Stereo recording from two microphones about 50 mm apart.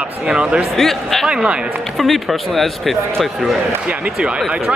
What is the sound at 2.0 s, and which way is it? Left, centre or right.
Speech, centre.